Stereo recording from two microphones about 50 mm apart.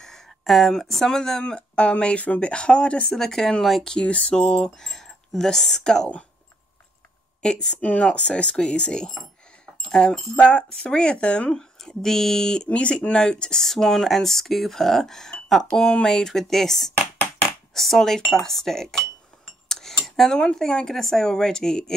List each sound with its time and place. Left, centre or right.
0.0 s speech: centre
1.4 s speech: centre
2.2 s speech: left
2.5 s speech: left
3.1 s speech: centre
3.8 s speech: centre
4.7 s speech: centre
7.4 s speech: centre
7.8 s speech: left; by 10.2 s centre
10.3 s speech: left
11.5 s speech: centre
12.6 s speech: left